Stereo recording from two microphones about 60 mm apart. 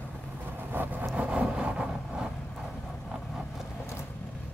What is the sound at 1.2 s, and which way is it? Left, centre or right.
Vehicle, centre.